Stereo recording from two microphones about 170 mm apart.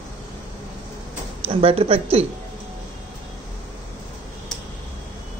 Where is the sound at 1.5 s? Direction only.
35° right (ahead or behind).